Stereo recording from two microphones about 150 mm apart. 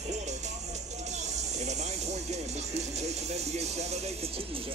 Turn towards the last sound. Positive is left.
turn(degrees=-40)  # may be behind; listen again after turning